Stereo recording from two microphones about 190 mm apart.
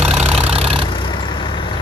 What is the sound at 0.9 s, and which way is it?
Vehicle, 25° left (ahead or behind).